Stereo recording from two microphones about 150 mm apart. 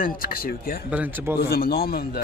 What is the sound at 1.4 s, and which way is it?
Speech, 90° left.